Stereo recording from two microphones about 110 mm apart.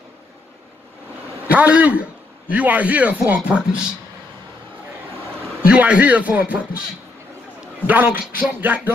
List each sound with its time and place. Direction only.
1.5 s speech: 15° right (ahead or behind)
5.7 s speech: 10° right (ahead or behind)
7.8 s speech: 15° right (ahead or behind)